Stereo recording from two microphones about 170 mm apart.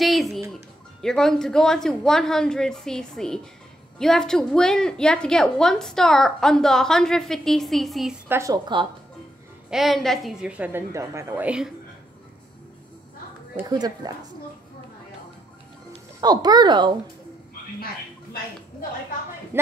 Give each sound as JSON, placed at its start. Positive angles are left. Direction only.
{"t": 0.0, "sound": "music", "side_deg": 0}
{"t": 1.0, "sound": "a woman's voice", "side_deg": 5}
{"t": 8.3, "sound": "speech", "side_deg": -20}
{"t": 9.7, "sound": "a woman's voice", "side_deg": 0}
{"t": 13.7, "sound": "speech", "side_deg": -25}
{"t": 15.9, "sound": "speech", "side_deg": -25}
{"t": 19.5, "sound": "speech", "side_deg": -15}